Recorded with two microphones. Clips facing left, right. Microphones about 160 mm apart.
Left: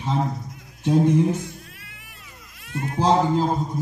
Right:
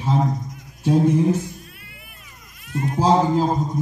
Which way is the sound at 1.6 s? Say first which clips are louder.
Right 2 dB; 90° left.